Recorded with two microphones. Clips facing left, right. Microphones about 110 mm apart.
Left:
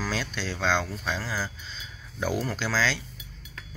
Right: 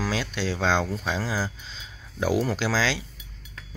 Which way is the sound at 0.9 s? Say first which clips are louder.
Right 4 dB; 20° right (ahead or behind).